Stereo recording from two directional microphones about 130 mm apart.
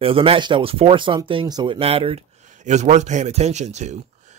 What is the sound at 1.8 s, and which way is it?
Speech, 50° right (ahead or behind).